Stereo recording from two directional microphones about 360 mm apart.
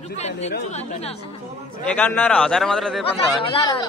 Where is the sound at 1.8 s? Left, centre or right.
Centre.